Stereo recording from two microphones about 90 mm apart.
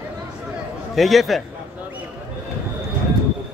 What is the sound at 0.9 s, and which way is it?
Speech, centre (ahead or behind).